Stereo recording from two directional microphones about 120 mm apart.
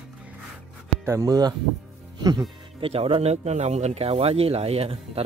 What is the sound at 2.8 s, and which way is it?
Speech, 50° right (ahead or behind).